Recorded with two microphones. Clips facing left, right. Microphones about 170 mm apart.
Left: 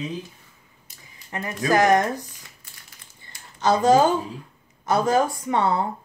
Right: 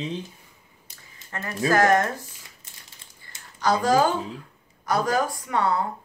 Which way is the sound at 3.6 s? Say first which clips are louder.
Left 3 dB; 20° left (ahead or behind).